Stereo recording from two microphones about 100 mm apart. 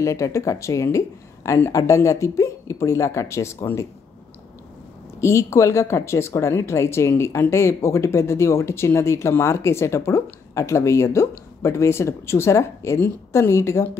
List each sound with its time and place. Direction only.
0.0 s a woman's voice: 30° left (ahead or behind)
5.2 s speech: 30° left (ahead or behind)